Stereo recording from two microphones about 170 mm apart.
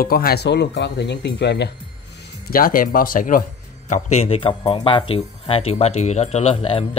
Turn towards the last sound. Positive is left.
turn(degrees=35)  # may be behind; listen again after turning